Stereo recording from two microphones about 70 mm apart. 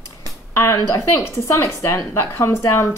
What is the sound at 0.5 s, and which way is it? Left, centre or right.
A woman's voice, left.